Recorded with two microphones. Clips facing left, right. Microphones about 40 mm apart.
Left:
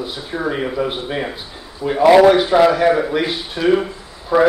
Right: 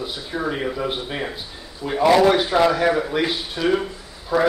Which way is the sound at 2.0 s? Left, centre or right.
Left.